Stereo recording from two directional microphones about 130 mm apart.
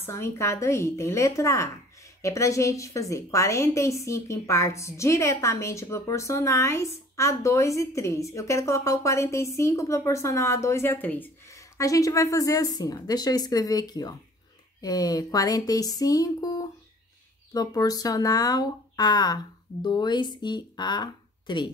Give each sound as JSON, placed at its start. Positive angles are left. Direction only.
{"t": 0.0, "sound": "a woman's voice", "side_deg": 20}
{"t": 11.8, "sound": "a woman's voice", "side_deg": 25}